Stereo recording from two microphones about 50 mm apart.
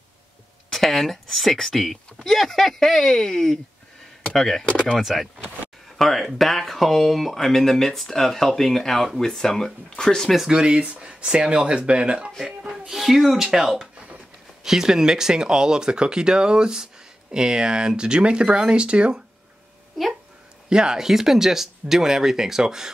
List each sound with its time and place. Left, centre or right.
0.7 s speech: centre
10.5 s speech: centre
12.4 s speech: centre
20.7 s speech: centre